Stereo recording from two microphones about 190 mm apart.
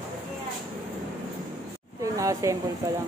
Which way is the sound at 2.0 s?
15° right (ahead or behind).